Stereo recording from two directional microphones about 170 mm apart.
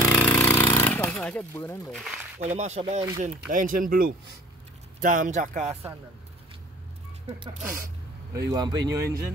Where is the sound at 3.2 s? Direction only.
50° right (ahead or behind).